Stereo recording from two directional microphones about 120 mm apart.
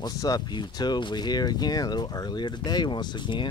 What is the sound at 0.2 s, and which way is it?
Speech, 35° left (ahead or behind).